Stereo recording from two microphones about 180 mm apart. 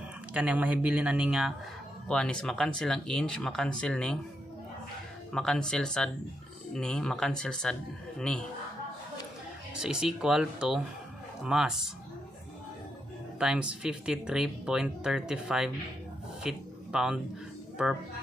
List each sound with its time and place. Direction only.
0.3 s speech: 10° right (ahead or behind)
5.3 s speech: 5° left (ahead or behind)
9.8 s speech: 5° right (ahead or behind)
13.4 s speech: 5° right (ahead or behind)
16.4 s a sound: 5° right (ahead or behind)
17.8 s speech: 5° right (ahead or behind)